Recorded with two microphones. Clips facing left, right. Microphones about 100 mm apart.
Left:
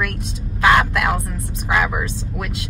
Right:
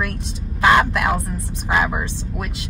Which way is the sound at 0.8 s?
20° right (ahead or behind).